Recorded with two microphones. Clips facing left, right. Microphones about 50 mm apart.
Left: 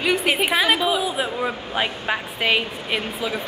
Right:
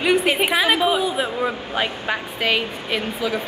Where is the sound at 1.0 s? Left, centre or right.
Centre.